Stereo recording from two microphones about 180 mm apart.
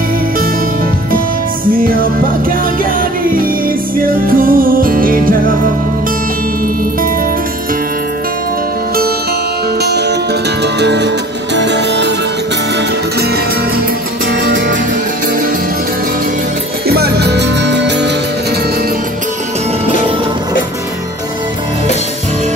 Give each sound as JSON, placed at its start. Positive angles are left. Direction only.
{"t": 1.7, "sound": "music", "side_deg": -50}
{"t": 4.0, "sound": "music", "side_deg": -50}
{"t": 9.8, "sound": "music", "side_deg": -65}
{"t": 16.8, "sound": "music", "side_deg": -60}